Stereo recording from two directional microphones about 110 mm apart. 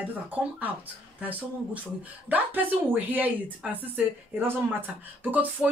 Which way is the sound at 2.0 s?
15° right (ahead or behind).